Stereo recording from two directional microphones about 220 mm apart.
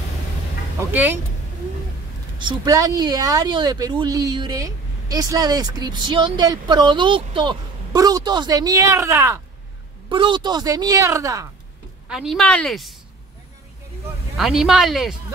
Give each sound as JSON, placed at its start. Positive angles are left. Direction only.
{"t": 0.7, "sound": "speech", "side_deg": -10}
{"t": 2.3, "sound": "speech", "side_deg": -20}
{"t": 12.1, "sound": "speech", "side_deg": 0}
{"t": 14.3, "sound": "speech", "side_deg": 0}